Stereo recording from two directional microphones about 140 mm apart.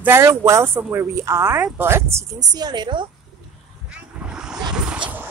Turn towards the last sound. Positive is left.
turn(degrees=-5)  # may be behind; listen again after turning